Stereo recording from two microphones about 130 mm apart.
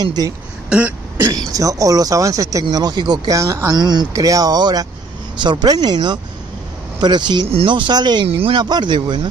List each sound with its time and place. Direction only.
0.0 s speech: 30° right (ahead or behind)
0.7 s throat clearing: 10° right (ahead or behind)
1.5 s speech: 25° right (ahead or behind)
8.3 s speech: 50° right (ahead or behind)
8.5 s speech: 35° right (ahead or behind)